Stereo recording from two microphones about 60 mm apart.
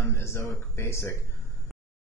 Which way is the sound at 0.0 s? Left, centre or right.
Left.